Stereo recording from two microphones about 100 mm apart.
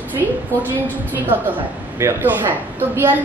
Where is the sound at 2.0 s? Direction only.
25° right (ahead or behind).